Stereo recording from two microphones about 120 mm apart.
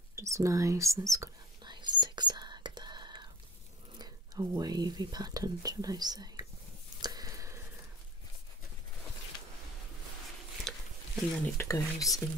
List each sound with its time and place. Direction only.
0.1 s whispering: 25° right (ahead or behind)
1.7 s whispering: 40° right (ahead or behind)
4.0 s speech: 35° right (ahead or behind)
7.0 s a sound: 35° right (ahead or behind)
10.7 s a sound: 5° left (ahead or behind)
11.5 s speech: 25° left (ahead or behind)